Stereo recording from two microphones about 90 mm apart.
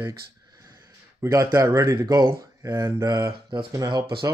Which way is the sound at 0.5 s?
45° right (ahead or behind).